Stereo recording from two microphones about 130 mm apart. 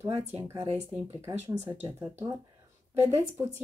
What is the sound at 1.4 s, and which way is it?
Speech, 20° right (ahead or behind).